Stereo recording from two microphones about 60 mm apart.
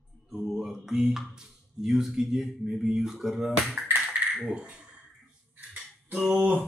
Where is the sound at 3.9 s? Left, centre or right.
Centre.